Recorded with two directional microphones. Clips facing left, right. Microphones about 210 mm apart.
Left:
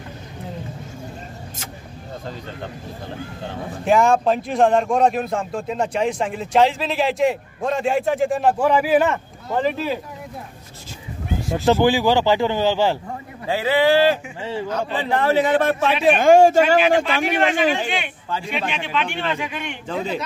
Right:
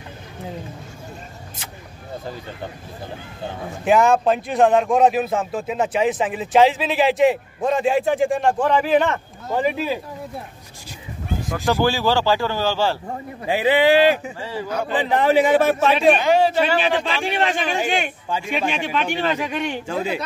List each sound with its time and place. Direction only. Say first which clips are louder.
3.8 s speech: even; centre (ahead or behind)
9.5 s a man's voice: even; 10° right (ahead or behind)
11.4 s speech: left 3 dB; 20° left (ahead or behind)
13.5 s a man's voice: right 1 dB; 15° right (ahead or behind)
14.4 s speech: left 2 dB; 25° left (ahead or behind)
14.7 s a man's voice: right 3 dB; 10° right (ahead or behind)
16.2 s a man's voice: left 5 dB; 50° left (ahead or behind)
17.2 s speech: left 3 dB; 30° right (ahead or behind)
19.9 s a man's voice: left 2 dB; 10° right (ahead or behind)